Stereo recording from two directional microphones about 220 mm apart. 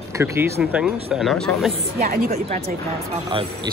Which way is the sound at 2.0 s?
40° right (ahead or behind).